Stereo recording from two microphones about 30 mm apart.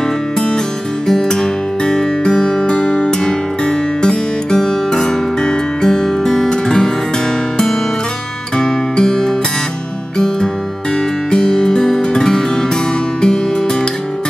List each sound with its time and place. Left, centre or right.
1.0 s music: centre
8.5 s music: left